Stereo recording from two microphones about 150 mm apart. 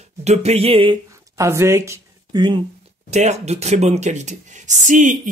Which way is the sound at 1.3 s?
20° right (ahead or behind).